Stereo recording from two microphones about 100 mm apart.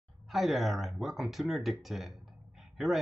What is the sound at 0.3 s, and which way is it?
Speech, centre (ahead or behind).